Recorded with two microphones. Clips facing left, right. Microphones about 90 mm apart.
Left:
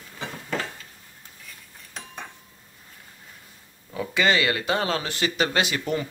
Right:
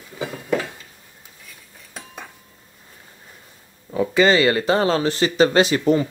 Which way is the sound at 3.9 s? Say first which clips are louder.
Right 6 dB; 40° right (ahead or behind).